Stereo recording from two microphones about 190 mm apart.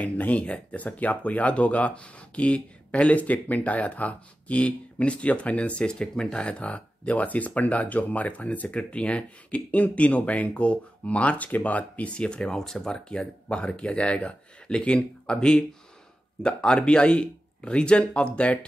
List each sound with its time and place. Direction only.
0.0 s speech: 5° left (ahead or behind)